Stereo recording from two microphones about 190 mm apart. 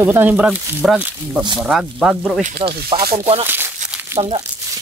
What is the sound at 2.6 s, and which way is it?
Speech, 60° right (ahead or behind).